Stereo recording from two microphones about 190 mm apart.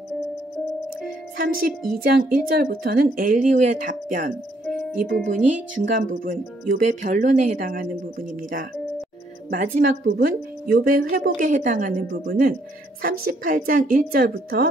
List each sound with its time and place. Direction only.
1.3 s a woman's voice: 50° right (ahead or behind)